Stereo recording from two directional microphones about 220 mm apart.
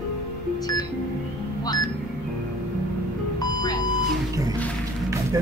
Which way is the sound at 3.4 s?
15° left (ahead or behind).